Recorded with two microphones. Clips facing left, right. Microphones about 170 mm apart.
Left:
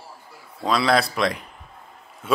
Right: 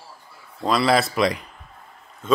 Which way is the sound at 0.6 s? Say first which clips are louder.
Right 1 dB; centre (ahead or behind).